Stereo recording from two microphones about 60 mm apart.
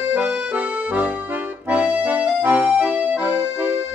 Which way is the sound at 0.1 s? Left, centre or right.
Right.